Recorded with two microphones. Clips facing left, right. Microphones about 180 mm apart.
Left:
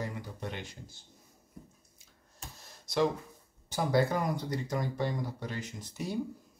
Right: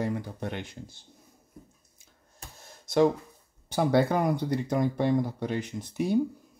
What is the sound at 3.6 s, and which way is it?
Speech, 60° right (ahead or behind).